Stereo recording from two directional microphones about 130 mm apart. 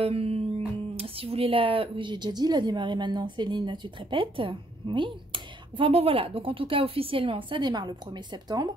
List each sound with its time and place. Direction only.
0.0 s speech: 50° right (ahead or behind)